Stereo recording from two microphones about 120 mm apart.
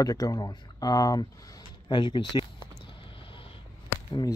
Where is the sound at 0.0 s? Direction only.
30° left (ahead or behind).